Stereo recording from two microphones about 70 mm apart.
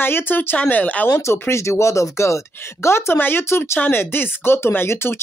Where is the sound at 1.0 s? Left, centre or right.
Left.